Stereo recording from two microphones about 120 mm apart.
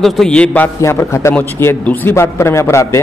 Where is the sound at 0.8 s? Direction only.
25° left (ahead or behind).